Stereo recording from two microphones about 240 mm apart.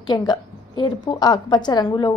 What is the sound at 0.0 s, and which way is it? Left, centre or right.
A woman's voice, centre.